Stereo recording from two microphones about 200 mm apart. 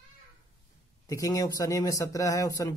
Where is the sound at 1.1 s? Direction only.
15° left (ahead or behind).